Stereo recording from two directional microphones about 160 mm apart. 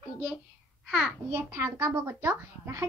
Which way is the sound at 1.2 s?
15° right (ahead or behind).